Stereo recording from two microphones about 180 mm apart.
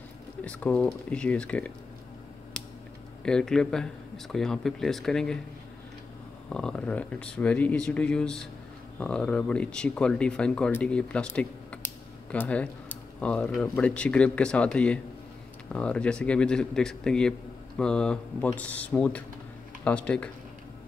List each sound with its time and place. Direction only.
0.4 s speech: 5° left (ahead or behind)
3.3 s speech: 5° left (ahead or behind)
6.5 s speech: 5° left (ahead or behind)